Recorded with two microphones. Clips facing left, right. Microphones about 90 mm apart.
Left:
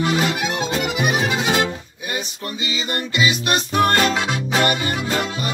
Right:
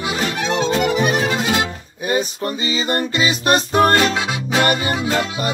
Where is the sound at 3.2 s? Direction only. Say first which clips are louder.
Right 2 dB; 35° right (ahead or behind).